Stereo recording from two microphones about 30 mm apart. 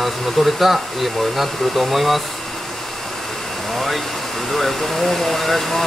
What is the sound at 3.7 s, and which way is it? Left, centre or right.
Speech, centre.